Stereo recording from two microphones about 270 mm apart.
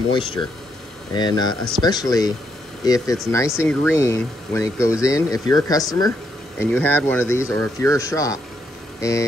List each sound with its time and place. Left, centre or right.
0.1 s speech: centre